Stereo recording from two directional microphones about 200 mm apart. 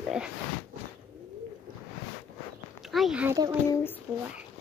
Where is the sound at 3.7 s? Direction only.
10° left (ahead or behind).